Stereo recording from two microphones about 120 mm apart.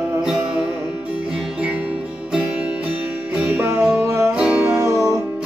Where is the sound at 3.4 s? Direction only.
20° right (ahead or behind).